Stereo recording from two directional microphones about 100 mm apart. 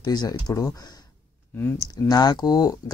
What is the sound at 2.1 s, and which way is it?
Speech, 40° left (ahead or behind).